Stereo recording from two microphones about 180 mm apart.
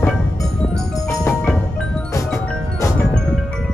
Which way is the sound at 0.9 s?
15° left (ahead or behind).